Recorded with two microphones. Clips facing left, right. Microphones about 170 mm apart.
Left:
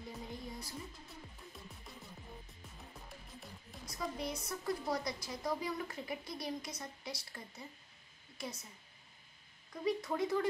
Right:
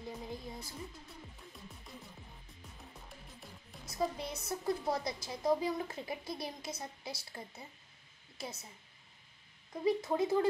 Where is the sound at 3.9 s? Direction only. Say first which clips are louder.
Right 4 dB; 25° right (ahead or behind).